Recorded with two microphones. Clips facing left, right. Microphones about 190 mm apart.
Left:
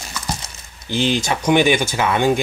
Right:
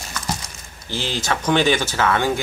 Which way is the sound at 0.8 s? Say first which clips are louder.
Left 5 dB; 15° left (ahead or behind).